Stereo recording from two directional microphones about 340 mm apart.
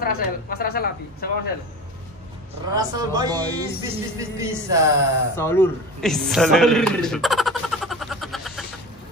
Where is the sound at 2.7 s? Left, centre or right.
Centre.